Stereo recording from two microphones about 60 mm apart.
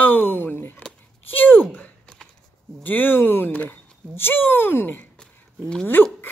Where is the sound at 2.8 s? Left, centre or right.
Left.